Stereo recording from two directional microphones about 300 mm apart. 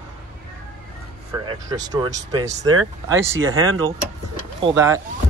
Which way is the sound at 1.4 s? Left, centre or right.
Centre.